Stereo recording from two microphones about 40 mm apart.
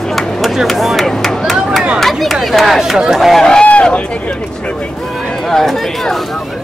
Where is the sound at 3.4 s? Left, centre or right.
Centre.